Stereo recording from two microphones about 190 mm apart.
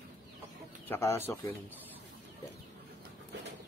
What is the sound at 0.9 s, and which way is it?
Speech, 15° left (ahead or behind).